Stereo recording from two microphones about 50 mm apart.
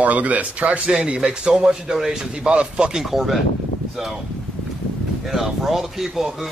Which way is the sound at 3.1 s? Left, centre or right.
Centre.